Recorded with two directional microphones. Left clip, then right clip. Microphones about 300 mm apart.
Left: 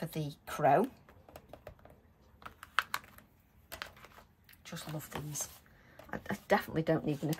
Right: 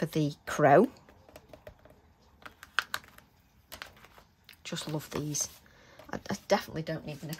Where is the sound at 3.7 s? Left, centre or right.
Centre.